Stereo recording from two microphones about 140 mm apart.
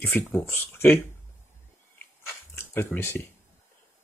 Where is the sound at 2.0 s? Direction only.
20° left (ahead or behind).